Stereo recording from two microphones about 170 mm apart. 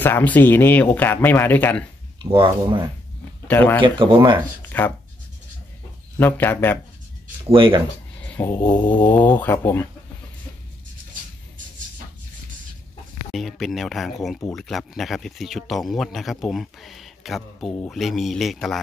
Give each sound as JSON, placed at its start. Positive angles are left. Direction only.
{"t": 0.0, "sound": "speech", "side_deg": 10}
{"t": 2.3, "sound": "speech", "side_deg": -30}
{"t": 3.4, "sound": "speech", "side_deg": 10}
{"t": 3.8, "sound": "speech", "side_deg": -30}
{"t": 4.7, "sound": "speech", "side_deg": 10}
{"t": 6.1, "sound": "speech", "side_deg": 10}
{"t": 7.4, "sound": "speech", "side_deg": -30}
{"t": 8.2, "sound": "a sound", "side_deg": 10}
{"t": 9.1, "sound": "speech", "side_deg": 10}
{"t": 13.3, "sound": "speech", "side_deg": 0}